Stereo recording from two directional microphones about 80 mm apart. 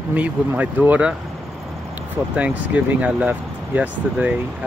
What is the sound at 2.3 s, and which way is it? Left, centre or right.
Speech, centre.